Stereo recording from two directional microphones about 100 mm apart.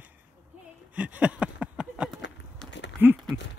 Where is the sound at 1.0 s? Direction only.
15° right (ahead or behind).